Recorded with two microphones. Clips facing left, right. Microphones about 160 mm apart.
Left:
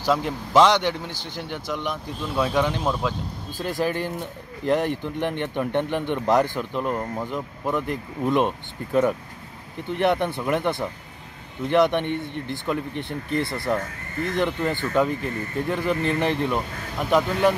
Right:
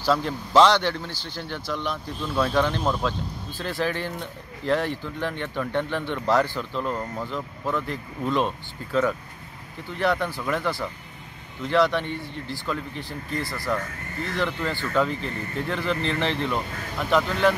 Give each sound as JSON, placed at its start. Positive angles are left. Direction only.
{"t": 0.0, "sound": "a man's voice", "side_deg": 15}